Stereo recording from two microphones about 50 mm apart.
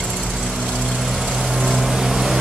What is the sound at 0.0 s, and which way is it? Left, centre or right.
Vehicle, centre.